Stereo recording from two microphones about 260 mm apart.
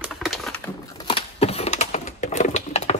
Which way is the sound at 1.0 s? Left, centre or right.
Centre.